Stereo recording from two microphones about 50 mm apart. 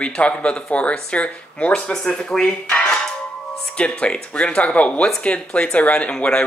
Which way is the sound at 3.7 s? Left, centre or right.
Left.